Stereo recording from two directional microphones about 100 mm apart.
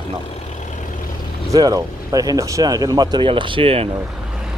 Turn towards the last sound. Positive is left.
turn(degrees=-70)  # may be behind; listen again after turning